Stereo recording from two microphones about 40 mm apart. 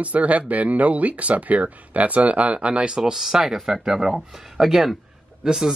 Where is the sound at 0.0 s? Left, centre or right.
Right.